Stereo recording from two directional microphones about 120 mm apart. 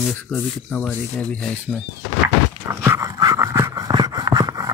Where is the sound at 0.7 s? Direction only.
10° left (ahead or behind).